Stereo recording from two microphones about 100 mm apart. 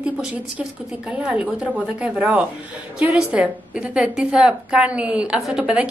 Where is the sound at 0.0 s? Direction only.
10° right (ahead or behind).